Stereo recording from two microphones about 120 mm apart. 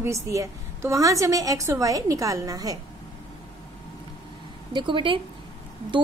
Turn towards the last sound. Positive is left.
turn(degrees=-45)  # may be behind; listen again after turning